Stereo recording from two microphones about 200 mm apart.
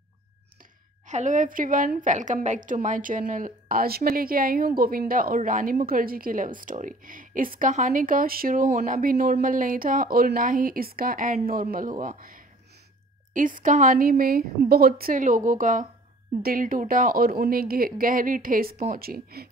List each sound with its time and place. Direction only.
1.0 s a woman's voice: 35° right (ahead or behind)